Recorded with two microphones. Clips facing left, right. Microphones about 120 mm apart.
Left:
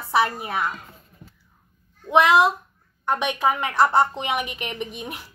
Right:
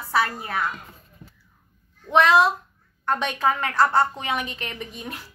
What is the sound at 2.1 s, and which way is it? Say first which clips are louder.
A woman's voice: left 1 dB; 15° left (ahead or behind).